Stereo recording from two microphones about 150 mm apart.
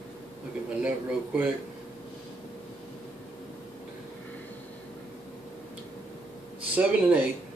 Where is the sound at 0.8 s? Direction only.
10° right (ahead or behind).